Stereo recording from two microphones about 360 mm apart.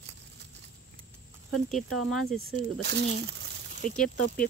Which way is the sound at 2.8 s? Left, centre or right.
Right.